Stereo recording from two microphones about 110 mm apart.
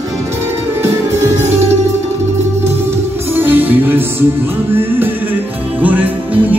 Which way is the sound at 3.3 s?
15° right (ahead or behind).